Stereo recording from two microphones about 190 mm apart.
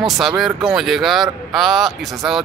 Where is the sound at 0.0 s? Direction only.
Centre (ahead or behind).